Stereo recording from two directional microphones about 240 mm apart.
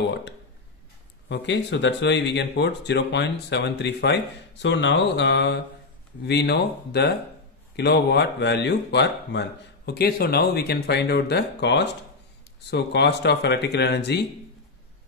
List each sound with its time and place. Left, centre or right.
1.3 s speech: left